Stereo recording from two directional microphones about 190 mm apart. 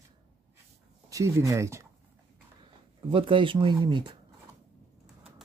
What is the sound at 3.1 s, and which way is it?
Speech, 25° right (ahead or behind).